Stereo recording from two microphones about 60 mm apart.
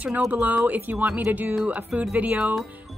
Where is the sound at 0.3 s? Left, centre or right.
Right.